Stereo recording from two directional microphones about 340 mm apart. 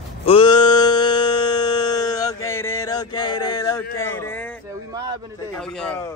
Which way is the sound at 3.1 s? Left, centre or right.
Left.